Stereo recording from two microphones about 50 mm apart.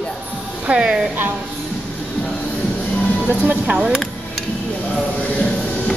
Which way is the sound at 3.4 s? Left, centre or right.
Right.